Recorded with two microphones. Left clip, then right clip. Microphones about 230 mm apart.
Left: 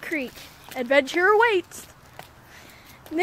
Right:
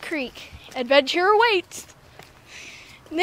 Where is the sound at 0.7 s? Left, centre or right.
Centre.